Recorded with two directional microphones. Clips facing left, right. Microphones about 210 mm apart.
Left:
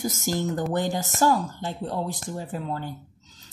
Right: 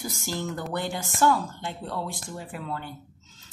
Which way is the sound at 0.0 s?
45° left (ahead or behind).